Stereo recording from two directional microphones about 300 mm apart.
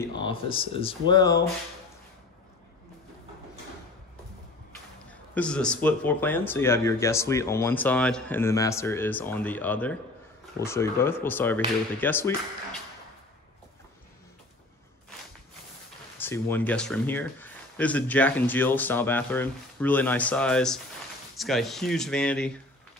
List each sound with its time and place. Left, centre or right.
0.0 s speech: centre
5.3 s speech: centre
16.2 s speech: centre